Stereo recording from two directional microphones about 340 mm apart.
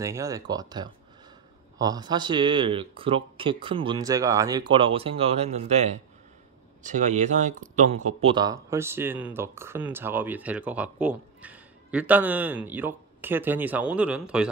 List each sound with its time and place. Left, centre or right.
0.0 s speech: centre